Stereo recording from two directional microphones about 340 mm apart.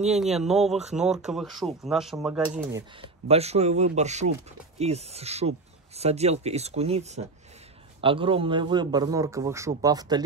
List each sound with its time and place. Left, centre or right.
0.1 s a man's voice: centre